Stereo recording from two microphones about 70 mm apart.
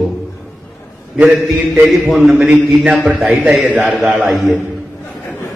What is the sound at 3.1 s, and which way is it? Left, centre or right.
A man's voice, centre.